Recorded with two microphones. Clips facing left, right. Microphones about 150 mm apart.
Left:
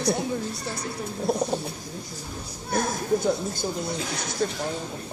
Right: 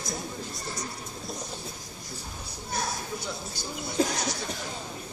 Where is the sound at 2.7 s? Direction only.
50° left (ahead or behind).